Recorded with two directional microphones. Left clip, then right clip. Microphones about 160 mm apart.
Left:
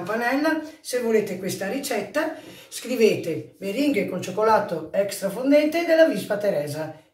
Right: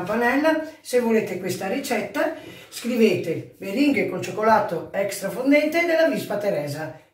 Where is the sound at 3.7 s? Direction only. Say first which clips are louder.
Right 2 dB; centre (ahead or behind).